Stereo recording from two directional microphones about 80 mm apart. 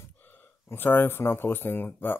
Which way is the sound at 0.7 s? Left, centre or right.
Left.